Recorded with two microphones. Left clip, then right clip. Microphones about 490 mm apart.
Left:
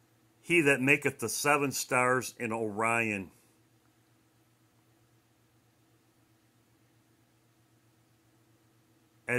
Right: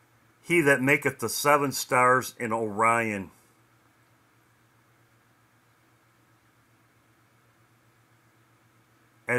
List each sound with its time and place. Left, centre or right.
0.4 s speech: left